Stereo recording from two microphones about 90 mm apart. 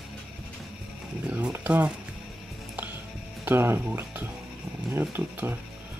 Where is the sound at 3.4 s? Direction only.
25° right (ahead or behind).